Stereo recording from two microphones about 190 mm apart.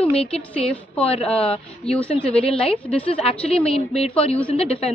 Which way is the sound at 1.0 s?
30° left (ahead or behind).